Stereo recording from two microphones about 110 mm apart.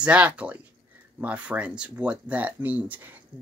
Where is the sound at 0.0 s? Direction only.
10° right (ahead or behind).